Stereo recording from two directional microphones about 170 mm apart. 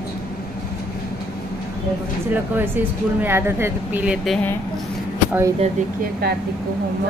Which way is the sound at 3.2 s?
15° right (ahead or behind).